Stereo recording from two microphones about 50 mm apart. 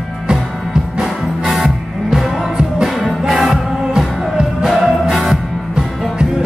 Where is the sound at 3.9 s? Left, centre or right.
Centre.